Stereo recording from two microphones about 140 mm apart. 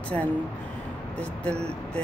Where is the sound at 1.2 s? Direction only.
5° left (ahead or behind).